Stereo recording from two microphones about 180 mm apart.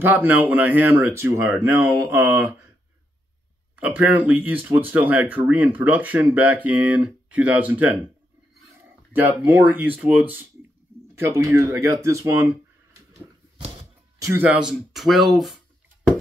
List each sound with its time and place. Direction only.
0.0 s speech: 10° right (ahead or behind)
3.7 s speech: 10° right (ahead or behind)
9.4 s speech: 10° right (ahead or behind)
14.2 s speech: 10° right (ahead or behind)